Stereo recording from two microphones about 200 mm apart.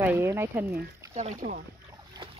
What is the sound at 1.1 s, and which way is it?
Speech, 35° right (ahead or behind).